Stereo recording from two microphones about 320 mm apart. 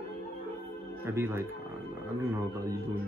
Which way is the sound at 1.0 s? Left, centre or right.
Centre.